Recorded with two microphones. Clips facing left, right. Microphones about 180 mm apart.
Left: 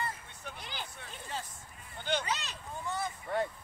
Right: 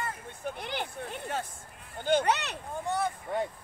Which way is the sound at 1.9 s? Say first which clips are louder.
Right 8 dB; 50° right (ahead or behind).